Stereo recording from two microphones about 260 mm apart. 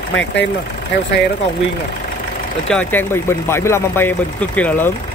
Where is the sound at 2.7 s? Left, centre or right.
Centre.